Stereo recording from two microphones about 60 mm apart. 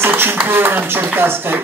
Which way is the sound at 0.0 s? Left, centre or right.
Right.